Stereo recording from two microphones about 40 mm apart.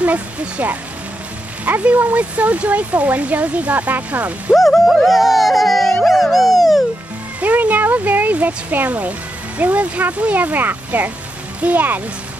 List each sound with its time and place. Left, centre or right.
0.0 s speech: right
4.6 s music: centre
6.3 s dog: centre
7.3 s speech: right
11.6 s speech: right